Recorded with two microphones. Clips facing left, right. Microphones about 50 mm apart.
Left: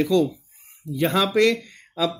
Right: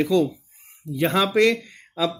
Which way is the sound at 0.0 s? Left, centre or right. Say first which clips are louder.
Even; centre.